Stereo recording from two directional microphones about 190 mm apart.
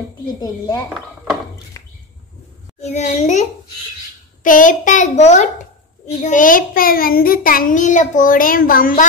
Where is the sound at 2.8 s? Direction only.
40° left (ahead or behind).